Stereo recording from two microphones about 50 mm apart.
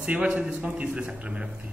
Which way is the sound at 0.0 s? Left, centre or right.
Right.